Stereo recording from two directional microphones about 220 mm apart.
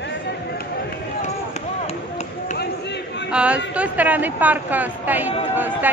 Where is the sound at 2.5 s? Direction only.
50° left (ahead or behind).